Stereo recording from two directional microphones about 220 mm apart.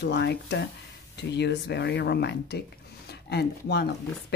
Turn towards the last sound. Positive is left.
turn(degrees=50)  # may be behind; listen again after turning